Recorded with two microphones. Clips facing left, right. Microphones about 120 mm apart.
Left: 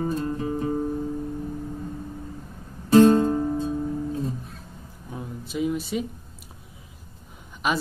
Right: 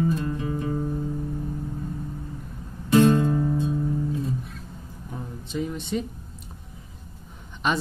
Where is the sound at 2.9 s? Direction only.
35° left (ahead or behind).